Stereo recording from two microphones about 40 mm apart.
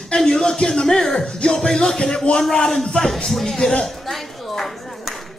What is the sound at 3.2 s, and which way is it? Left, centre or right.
Music, centre.